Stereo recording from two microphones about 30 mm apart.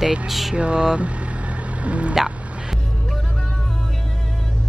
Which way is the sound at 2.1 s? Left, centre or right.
Centre.